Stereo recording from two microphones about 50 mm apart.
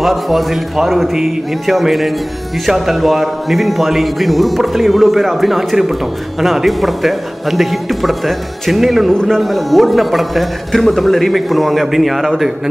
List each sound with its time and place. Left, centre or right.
0.0 s a man's voice: centre